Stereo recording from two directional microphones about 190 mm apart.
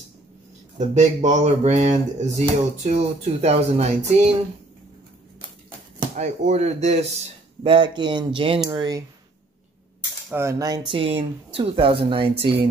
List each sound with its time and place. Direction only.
0.7 s speech: 40° right (ahead or behind)
6.1 s speech: 35° right (ahead or behind); by 9.0 s 20° right (ahead or behind)
10.3 s speech: 15° right (ahead or behind)